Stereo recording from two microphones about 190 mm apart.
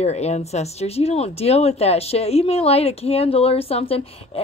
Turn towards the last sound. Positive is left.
turn(degrees=30)  # may be behind; listen again after turning